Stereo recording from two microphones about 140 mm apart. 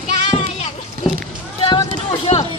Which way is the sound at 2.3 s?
50° left (ahead or behind).